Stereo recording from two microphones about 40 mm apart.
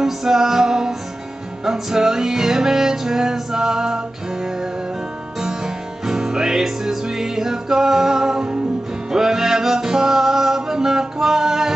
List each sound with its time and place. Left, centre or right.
0.0 s music: centre
6.0 s music: centre